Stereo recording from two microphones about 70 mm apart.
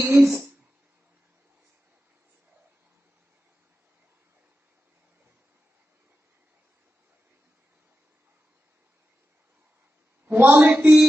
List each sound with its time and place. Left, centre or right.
0.0 s speech: right
10.2 s a woman's voice: right
10.7 s a sound: centre